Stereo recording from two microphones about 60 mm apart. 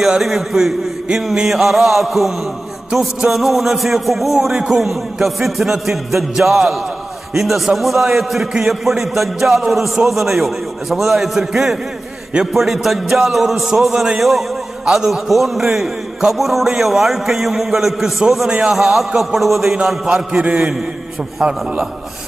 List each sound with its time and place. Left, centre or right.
0.0 s a man's voice: centre